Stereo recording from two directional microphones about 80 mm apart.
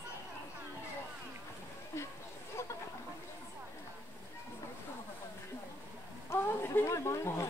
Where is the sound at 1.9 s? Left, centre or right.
Left.